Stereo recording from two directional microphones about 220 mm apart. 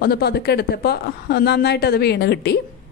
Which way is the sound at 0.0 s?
45° left (ahead or behind).